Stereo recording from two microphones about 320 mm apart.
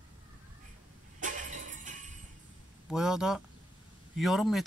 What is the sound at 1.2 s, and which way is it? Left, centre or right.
Vehicle, right.